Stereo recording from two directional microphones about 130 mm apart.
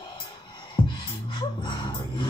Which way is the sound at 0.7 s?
40° left (ahead or behind).